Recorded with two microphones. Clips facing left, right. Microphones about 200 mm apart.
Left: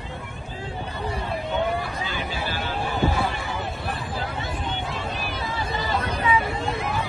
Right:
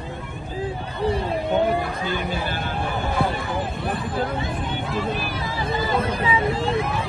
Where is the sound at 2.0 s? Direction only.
55° right (ahead or behind).